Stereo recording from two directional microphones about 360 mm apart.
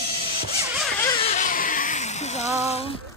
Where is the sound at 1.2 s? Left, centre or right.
Centre.